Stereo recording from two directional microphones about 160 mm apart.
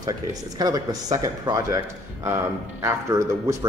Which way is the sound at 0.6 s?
25° right (ahead or behind).